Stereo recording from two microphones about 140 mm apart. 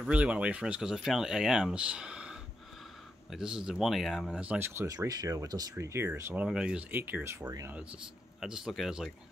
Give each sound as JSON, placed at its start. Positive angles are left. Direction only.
{"t": 0.0, "sound": "speech", "side_deg": -10}
{"t": 4.4, "sound": "speech", "side_deg": -10}
{"t": 6.4, "sound": "speech", "side_deg": -5}
{"t": 8.4, "sound": "speech", "side_deg": -5}